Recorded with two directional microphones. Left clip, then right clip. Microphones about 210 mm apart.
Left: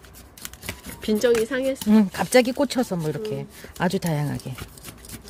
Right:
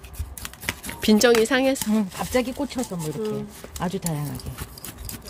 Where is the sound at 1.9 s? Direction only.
60° left (ahead or behind).